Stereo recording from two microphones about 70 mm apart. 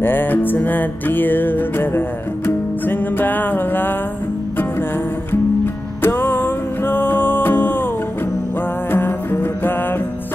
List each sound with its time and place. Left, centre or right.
0.0 s music: left
6.0 s music: left
8.9 s music: left